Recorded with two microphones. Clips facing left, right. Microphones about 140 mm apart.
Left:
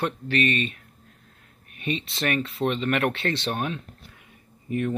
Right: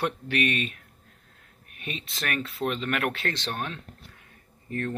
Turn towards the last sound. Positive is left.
turn(degrees=15)  # may be behind; listen again after turning